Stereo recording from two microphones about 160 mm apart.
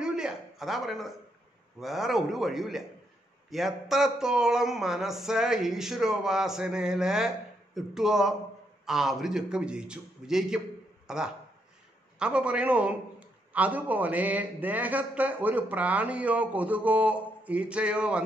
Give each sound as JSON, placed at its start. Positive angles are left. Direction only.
{"t": 0.0, "sound": "a man's voice", "side_deg": -5}